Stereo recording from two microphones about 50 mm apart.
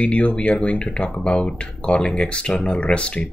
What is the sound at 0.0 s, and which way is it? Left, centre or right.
Speech, left.